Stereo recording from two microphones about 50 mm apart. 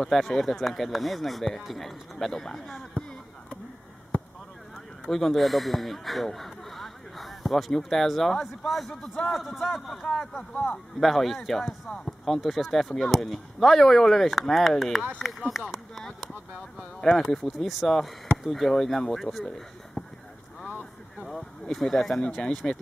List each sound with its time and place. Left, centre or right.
0.1 s speech: centre
5.1 s speech: centre
10.0 s speech: centre
10.5 s speech: left
11.0 s speech: centre
21.2 s a sound: centre
21.7 s speech: centre